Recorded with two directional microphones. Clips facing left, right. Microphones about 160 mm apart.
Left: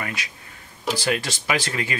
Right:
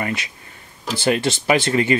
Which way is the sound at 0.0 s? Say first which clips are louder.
Right 6 dB; 25° right (ahead or behind).